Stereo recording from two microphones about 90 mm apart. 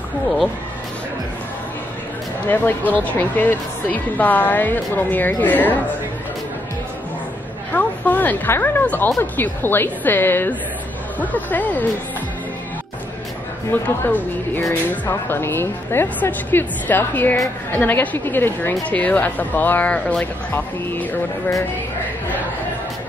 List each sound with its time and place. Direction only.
2.4 s speech: 20° left (ahead or behind)
7.7 s a sound: 20° left (ahead or behind)
9.2 s speech: 20° left (ahead or behind)
13.7 s speech: 20° left (ahead or behind)